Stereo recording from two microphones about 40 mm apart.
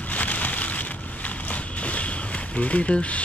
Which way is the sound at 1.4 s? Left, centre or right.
Left.